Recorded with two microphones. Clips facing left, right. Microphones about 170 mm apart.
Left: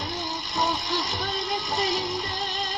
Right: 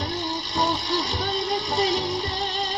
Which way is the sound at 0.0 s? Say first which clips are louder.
Right 4 dB; 30° right (ahead or behind).